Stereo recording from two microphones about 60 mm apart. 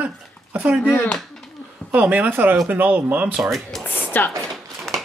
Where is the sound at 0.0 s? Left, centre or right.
Right.